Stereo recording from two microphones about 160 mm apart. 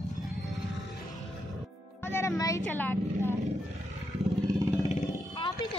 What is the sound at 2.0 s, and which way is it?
Music, 15° left (ahead or behind).